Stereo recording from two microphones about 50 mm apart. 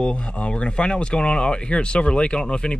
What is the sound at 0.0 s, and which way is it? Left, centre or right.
Speech, left.